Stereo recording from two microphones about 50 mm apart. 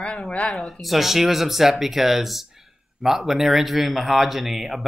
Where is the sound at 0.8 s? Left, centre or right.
Centre.